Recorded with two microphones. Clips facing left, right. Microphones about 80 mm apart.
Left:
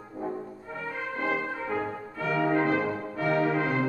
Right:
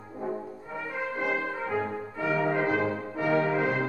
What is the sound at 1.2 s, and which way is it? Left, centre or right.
Brass instrument, centre.